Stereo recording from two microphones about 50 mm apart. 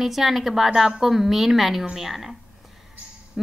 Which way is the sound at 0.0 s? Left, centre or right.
Centre.